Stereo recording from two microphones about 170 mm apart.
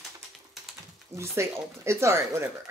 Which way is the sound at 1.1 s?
15° right (ahead or behind).